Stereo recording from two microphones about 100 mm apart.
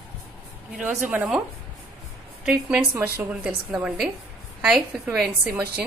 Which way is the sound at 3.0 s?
20° right (ahead or behind).